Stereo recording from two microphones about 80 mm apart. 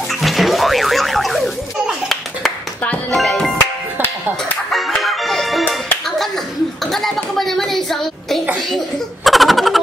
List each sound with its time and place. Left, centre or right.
0.1 s music: centre
2.8 s music: centre
3.2 s music: centre
3.4 s music: left
4.6 s music: centre
6.0 s clapping: centre
6.9 s a sound: centre
8.5 s laughter: centre